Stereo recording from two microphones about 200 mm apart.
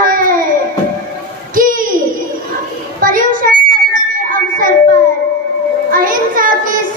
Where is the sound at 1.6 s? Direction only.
45° right (ahead or behind).